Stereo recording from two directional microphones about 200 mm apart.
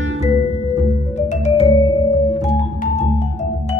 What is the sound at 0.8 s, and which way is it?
Music, 35° left (ahead or behind).